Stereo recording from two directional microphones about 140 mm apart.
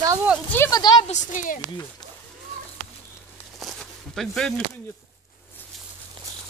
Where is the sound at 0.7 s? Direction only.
30° left (ahead or behind).